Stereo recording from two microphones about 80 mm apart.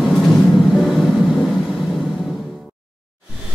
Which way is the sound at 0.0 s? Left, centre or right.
Centre.